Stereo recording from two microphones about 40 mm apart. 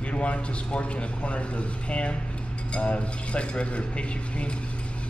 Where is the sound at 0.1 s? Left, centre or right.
Left.